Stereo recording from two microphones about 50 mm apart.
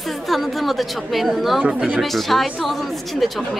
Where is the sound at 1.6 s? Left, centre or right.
Centre.